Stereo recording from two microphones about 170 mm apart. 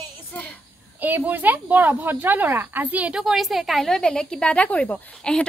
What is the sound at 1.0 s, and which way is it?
Speech, 10° right (ahead or behind).